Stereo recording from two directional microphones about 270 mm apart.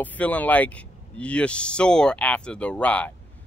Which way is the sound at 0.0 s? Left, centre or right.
Centre.